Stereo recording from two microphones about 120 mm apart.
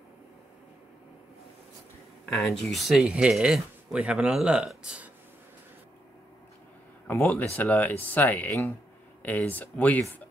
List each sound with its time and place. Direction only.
2.2 s speech: 5° left (ahead or behind)
7.1 s speech: 15° left (ahead or behind)